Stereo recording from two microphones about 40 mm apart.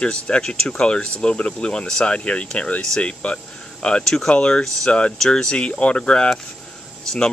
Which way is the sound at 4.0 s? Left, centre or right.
Centre.